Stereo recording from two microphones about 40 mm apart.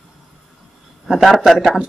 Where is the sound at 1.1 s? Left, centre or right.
Centre.